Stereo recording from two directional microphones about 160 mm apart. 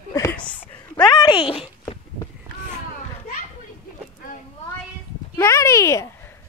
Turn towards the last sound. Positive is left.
turn(degrees=20)  # may be behind; listen again after turning